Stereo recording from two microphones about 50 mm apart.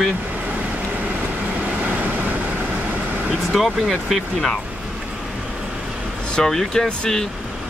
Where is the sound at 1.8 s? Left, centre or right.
Right.